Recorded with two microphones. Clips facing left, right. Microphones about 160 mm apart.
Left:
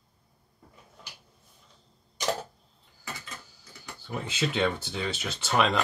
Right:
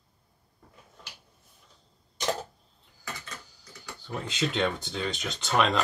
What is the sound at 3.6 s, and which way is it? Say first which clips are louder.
Speech: right 1 dB; 5° left (ahead or behind).